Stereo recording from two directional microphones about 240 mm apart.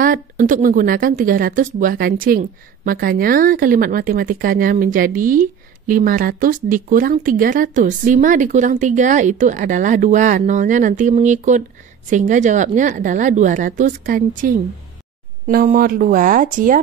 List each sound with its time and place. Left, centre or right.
0.0 s a woman's voice: right